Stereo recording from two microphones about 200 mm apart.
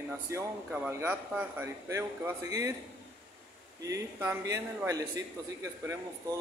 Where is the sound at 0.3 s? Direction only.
15° right (ahead or behind).